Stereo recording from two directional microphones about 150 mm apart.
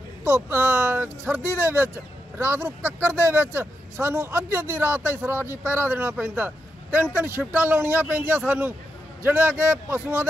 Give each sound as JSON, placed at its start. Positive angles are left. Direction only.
{"t": 0.2, "sound": "speech", "side_deg": -15}